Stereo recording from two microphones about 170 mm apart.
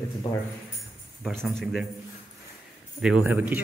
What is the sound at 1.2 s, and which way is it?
Speech, centre (ahead or behind).